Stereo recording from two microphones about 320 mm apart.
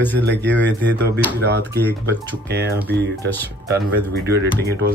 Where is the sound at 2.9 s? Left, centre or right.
Right.